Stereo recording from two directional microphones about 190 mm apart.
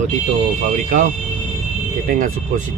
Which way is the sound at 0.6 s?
40° right (ahead or behind).